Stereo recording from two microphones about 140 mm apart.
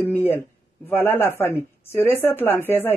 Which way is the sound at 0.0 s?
15° left (ahead or behind).